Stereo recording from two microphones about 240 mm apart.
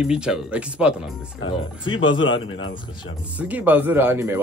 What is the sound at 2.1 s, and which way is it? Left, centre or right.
Speech, centre.